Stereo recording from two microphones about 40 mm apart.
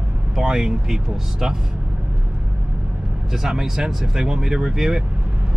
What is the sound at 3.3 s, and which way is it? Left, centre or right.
Speech, centre.